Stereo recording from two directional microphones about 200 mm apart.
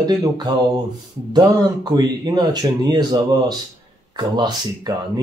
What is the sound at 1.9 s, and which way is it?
Speech, 20° right (ahead or behind).